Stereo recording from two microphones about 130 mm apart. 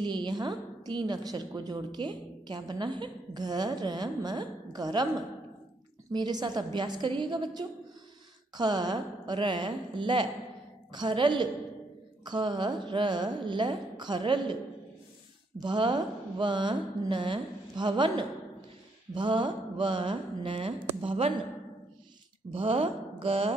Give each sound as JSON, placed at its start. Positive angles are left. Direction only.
{"t": 0.0, "sound": "a woman's voice", "side_deg": -35}
{"t": 6.1, "sound": "a woman's voice", "side_deg": -35}
{"t": 15.6, "sound": "a woman's voice", "side_deg": -35}
{"t": 22.5, "sound": "speech", "side_deg": -45}